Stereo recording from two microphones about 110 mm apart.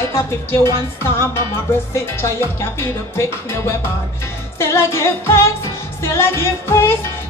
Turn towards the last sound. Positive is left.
turn(degrees=25)  # may be behind; listen again after turning